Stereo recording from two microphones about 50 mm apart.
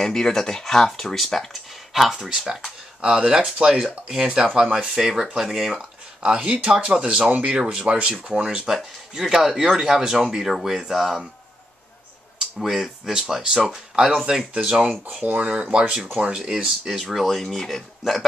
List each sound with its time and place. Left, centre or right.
0.0 s speech: centre
2.0 s speech: centre
5.8 s speech: centre
8.6 s speech: centre
12.4 s speech: centre
13.4 s speech: right
13.7 s speech: centre
15.0 s speech: right
16.3 s speech: centre
17.0 s speech: centre